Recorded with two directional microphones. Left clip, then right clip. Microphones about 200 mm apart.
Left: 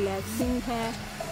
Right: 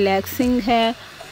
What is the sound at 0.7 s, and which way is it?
Speech, 30° right (ahead or behind).